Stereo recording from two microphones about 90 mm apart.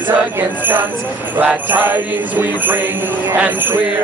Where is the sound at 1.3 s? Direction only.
20° right (ahead or behind).